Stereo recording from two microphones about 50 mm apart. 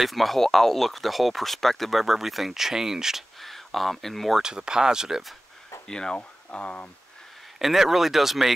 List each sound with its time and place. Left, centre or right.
0.0 s speech: centre
3.3 s speech: centre
4.4 s speech: centre
5.9 s speech: centre
6.1 s speech: left
7.5 s speech: centre